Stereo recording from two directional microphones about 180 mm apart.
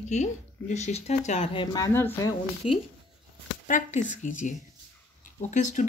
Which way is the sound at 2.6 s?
35° left (ahead or behind).